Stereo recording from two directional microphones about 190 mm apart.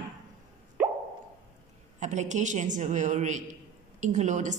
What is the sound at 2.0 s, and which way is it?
A man's voice, 40° right (ahead or behind).